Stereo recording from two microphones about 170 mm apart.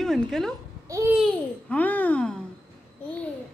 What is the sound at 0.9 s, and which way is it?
Babbling, 20° right (ahead or behind).